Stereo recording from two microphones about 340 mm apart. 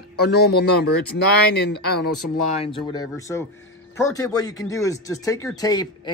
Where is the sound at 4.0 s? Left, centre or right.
Centre.